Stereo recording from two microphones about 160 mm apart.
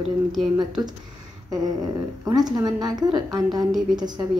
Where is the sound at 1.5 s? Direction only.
25° right (ahead or behind).